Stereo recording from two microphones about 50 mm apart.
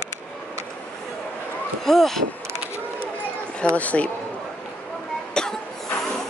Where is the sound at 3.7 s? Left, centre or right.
Left.